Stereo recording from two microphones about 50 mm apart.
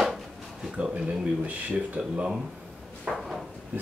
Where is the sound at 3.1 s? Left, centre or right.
Centre.